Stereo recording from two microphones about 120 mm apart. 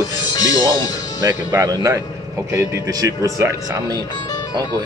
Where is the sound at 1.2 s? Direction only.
30° right (ahead or behind).